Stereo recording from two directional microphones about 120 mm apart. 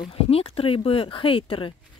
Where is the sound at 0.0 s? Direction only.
55° left (ahead or behind).